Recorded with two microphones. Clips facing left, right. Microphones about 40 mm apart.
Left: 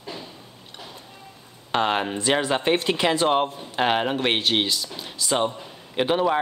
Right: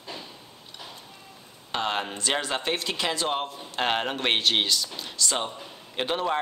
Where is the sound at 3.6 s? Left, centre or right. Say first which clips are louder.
Left 4 dB; centre.